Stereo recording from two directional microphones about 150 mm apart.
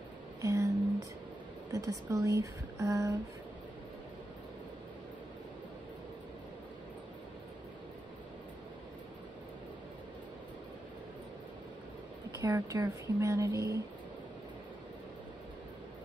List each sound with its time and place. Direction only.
0.4 s a sound: 20° right (ahead or behind)
1.7 s speech: 20° right (ahead or behind)
12.4 s speech: 20° right (ahead or behind)